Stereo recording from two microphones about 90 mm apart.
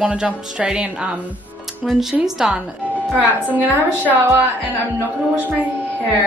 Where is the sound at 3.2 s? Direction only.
20° right (ahead or behind).